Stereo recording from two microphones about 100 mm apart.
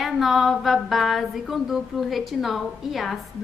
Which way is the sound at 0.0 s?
Centre (ahead or behind).